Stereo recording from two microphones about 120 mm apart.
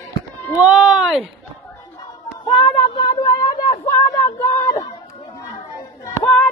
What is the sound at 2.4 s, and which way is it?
Speech, 40° left (ahead or behind).